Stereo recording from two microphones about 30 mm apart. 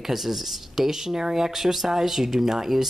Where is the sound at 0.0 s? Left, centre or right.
Centre.